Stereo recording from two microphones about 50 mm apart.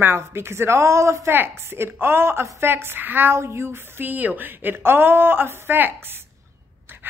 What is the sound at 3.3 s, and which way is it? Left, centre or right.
Speech, right.